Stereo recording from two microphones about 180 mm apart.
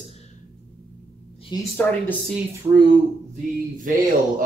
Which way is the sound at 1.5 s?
25° left (ahead or behind).